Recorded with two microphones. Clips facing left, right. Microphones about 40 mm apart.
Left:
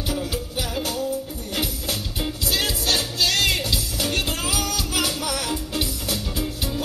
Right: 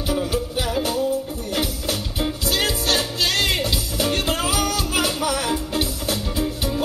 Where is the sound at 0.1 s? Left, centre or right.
Right.